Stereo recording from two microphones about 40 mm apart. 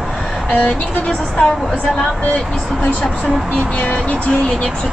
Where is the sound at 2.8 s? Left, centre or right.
Left.